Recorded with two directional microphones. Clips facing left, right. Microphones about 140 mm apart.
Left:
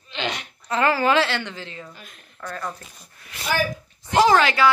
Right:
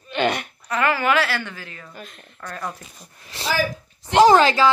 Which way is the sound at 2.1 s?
Centre (ahead or behind).